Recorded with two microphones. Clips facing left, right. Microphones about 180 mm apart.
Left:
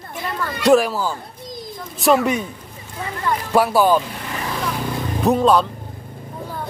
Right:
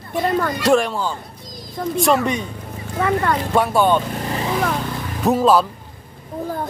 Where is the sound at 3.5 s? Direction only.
Centre (ahead or behind).